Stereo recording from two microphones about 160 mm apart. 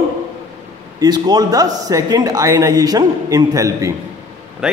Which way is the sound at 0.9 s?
25° right (ahead or behind).